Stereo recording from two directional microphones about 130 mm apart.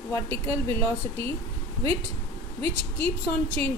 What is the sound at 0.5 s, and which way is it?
Speech, 20° left (ahead or behind).